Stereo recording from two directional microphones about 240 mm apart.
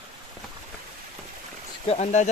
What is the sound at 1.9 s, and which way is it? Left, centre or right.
Speech, left.